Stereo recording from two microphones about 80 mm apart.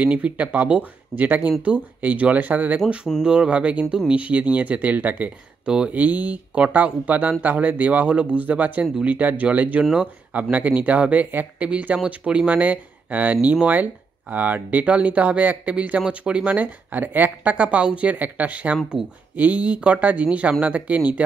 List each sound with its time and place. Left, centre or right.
0.0 s speech: centre